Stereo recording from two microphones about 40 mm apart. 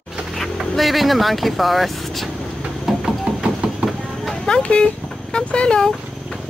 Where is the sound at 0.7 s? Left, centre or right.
Centre.